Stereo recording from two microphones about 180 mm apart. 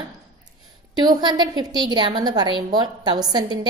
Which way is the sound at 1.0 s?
25° right (ahead or behind).